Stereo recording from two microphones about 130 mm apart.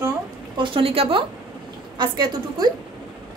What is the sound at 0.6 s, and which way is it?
Speech, 45° right (ahead or behind).